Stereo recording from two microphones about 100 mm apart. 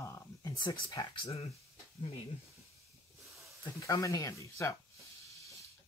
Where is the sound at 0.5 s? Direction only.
45° left (ahead or behind).